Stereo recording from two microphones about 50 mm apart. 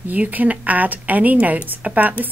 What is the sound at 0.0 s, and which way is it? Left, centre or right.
Speech, right.